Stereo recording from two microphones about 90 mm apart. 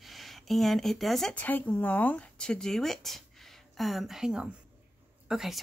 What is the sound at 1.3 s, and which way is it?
Speech, 20° left (ahead or behind).